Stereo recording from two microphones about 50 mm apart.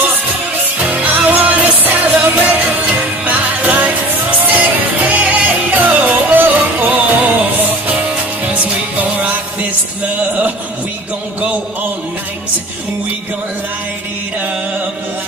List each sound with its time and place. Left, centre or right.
0.7 s music: right